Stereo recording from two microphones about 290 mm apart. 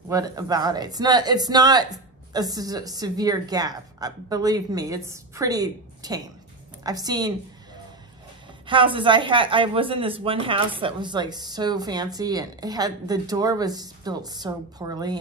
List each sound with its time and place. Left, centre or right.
0.1 s speech: centre
8.6 s speech: centre